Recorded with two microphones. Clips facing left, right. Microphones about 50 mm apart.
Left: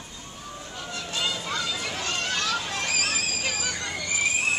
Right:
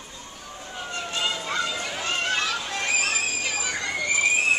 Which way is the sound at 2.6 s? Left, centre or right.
Centre.